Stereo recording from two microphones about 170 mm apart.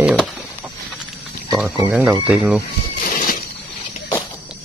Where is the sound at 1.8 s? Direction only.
10° right (ahead or behind).